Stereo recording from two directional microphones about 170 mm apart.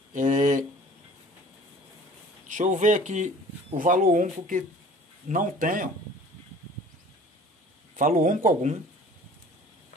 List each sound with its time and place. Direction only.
0.1 s a sound: 45° right (ahead or behind)
2.4 s speech: 45° right (ahead or behind)
7.9 s speech: 50° right (ahead or behind)